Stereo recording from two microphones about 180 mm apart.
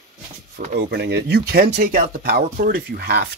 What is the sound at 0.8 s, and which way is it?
Speech, 70° right (ahead or behind).